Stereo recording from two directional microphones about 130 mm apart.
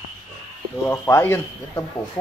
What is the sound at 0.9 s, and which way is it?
Speech, 20° left (ahead or behind).